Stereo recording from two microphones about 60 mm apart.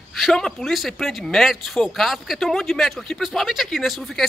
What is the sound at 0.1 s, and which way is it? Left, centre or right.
Speech, centre.